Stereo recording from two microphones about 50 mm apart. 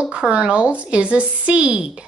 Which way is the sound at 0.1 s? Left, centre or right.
Right.